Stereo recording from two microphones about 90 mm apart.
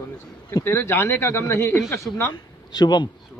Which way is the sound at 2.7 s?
55° left (ahead or behind).